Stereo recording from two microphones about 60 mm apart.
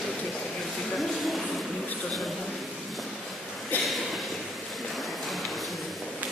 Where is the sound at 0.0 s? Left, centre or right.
Centre.